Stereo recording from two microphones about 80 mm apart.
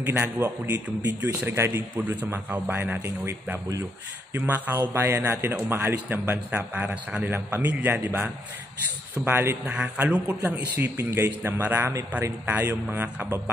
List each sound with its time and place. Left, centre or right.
0.2 s a man's voice: right